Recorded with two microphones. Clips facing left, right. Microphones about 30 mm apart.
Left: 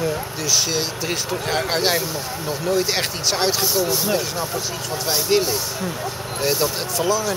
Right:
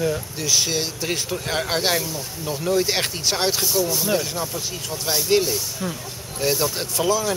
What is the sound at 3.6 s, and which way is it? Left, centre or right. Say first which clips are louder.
Speech: left 2 dB; centre.